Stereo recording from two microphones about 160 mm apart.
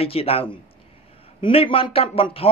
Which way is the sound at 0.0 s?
35° left (ahead or behind).